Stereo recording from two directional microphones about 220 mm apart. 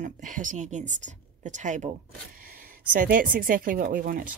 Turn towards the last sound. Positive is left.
turn(degrees=-40)  # may be behind; listen again after turning